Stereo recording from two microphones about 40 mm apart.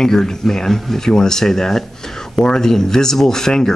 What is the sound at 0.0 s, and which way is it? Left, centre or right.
Speech, centre.